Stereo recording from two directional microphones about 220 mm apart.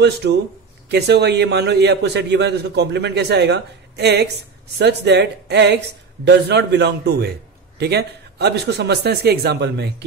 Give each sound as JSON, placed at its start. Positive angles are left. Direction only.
{"t": 0.0, "sound": "a man's voice", "side_deg": -50}